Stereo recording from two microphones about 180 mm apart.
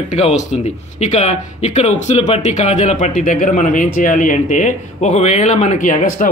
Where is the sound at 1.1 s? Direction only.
40° left (ahead or behind).